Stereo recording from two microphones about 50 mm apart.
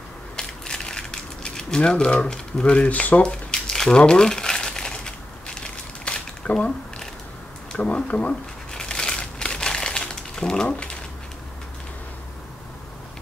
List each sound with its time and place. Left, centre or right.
0.4 s a sound: centre
1.8 s speech: left
3.2 s crumpling: centre
6.4 s speech: left
7.7 s crumpling: left